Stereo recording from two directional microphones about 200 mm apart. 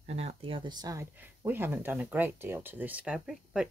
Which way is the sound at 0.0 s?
30° right (ahead or behind).